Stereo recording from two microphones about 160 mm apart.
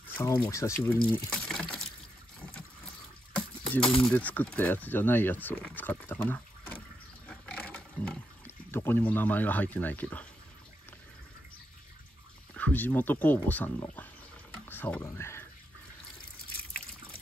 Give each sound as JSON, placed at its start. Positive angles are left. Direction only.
{"t": 0.1, "sound": "a sound", "side_deg": 15}
{"t": 0.5, "sound": "speech", "side_deg": 20}
{"t": 1.1, "sound": "water", "side_deg": 5}
{"t": 3.7, "sound": "speech", "side_deg": 5}
{"t": 7.2, "sound": "a sound", "side_deg": 5}
{"t": 8.5, "sound": "speech", "side_deg": 15}
{"t": 12.5, "sound": "speech", "side_deg": 10}